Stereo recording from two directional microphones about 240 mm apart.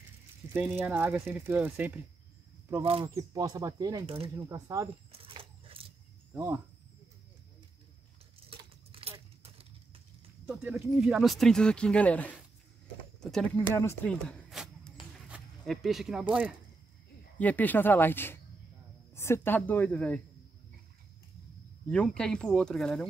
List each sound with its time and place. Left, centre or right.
0.6 s speech: centre
2.8 s speech: right
4.5 s a sound: centre
6.3 s speech: centre
8.5 s a sound: right
10.4 s speech: centre
14.5 s a sound: centre
17.4 s speech: centre
21.8 s speech: centre